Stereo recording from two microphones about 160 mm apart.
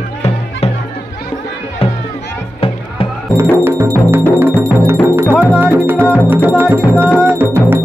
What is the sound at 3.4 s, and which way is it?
Music, 15° right (ahead or behind).